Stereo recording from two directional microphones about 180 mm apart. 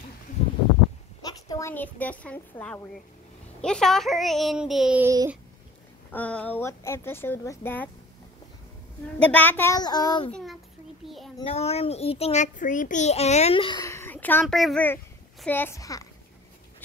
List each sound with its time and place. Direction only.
1.2 s a woman's voice: 20° left (ahead or behind); by 5.0 s 5° right (ahead or behind)
5.0 s a sound: 20° right (ahead or behind)
6.1 s speech: 10° left (ahead or behind)
9.2 s speech: 10° left (ahead or behind)
9.8 s a child's voice: 20° left (ahead or behind)
10.3 s a child's voice: centre (ahead or behind)
11.5 s a child's voice: 35° left (ahead or behind)
13.8 s a sound: 15° left (ahead or behind)
14.6 s a child's voice: 5° left (ahead or behind)